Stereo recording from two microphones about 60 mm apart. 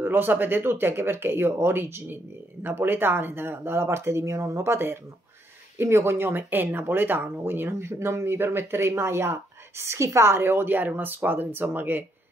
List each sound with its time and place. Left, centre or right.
0.0 s speech: right